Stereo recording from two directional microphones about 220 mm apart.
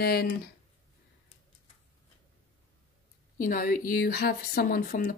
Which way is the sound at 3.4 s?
40° left (ahead or behind).